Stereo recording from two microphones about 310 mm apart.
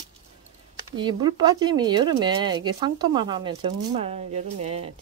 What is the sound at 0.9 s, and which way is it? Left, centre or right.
Speech, centre.